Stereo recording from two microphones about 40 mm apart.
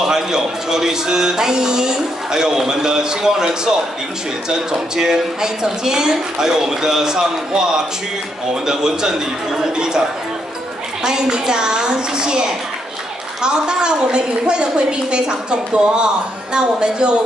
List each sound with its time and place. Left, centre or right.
0.0 s a man's voice: centre
4.7 s a man's voice: centre
11.1 s a woman's voice: centre